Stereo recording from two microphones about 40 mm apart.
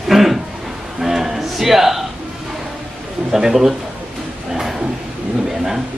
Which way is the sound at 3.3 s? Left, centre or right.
Centre.